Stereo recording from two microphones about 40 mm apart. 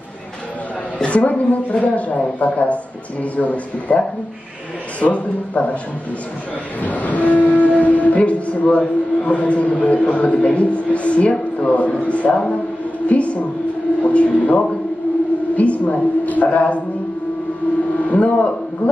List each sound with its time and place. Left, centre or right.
0.9 s a woman's voice: left
5.0 s a woman's voice: left
6.8 s a woman's voice: left
17.9 s speech: left